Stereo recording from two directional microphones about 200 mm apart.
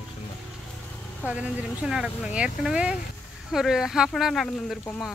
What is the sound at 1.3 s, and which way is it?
Speech, 5° right (ahead or behind).